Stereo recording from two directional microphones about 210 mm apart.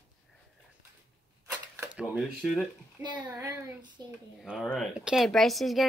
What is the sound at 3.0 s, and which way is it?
A child's voice, 20° right (ahead or behind).